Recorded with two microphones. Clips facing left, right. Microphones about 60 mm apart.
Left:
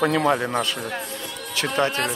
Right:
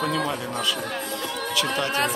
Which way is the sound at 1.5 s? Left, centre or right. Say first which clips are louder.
Left 4 dB; left.